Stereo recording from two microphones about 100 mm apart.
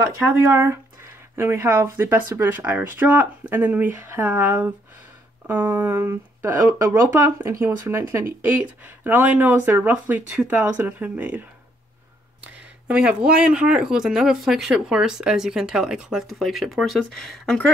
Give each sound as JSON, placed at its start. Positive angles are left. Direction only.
{"t": 0.3, "sound": "speech", "side_deg": -25}
{"t": 12.8, "sound": "speech", "side_deg": -10}